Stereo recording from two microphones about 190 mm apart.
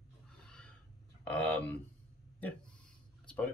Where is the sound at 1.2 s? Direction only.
10° left (ahead or behind).